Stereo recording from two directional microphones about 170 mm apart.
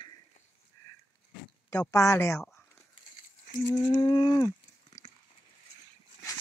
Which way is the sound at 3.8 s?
30° left (ahead or behind).